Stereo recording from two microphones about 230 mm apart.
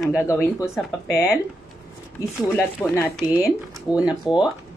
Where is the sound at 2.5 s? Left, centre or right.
Centre.